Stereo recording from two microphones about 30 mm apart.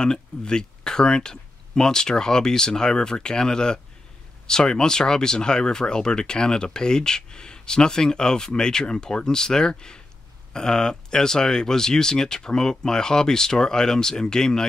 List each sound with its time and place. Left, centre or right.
0.0 s speech: left